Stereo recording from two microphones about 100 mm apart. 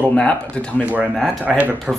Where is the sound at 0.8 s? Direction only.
15° right (ahead or behind).